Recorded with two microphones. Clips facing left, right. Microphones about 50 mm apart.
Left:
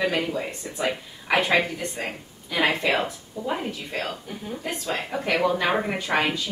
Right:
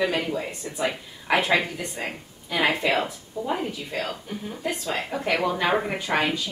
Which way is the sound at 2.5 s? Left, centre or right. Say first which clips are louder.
Even; centre.